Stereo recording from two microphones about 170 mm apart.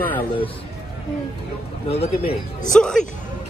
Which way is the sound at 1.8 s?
35° left (ahead or behind).